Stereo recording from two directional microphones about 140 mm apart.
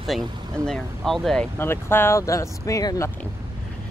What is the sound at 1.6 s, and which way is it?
Speech, 15° left (ahead or behind).